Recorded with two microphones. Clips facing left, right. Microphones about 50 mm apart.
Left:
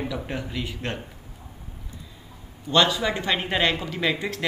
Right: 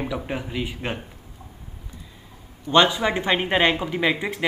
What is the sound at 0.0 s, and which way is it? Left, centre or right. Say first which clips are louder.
Speech: right 2 dB; centre.